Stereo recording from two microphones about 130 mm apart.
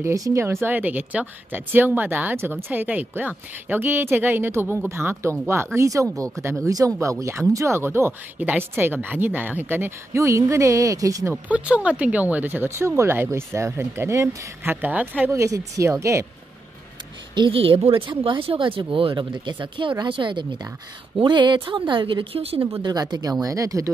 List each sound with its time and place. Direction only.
0.0 s speech: 25° right (ahead or behind)
11.4 s speech: 10° right (ahead or behind)
15.3 s speech: 25° right (ahead or behind)
17.4 s speech: 45° right (ahead or behind)
22.8 s speech: 35° right (ahead or behind)